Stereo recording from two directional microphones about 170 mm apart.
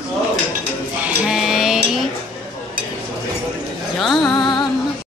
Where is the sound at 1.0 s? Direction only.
Centre (ahead or behind).